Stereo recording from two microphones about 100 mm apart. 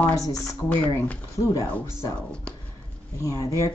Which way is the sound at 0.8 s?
25° left (ahead or behind).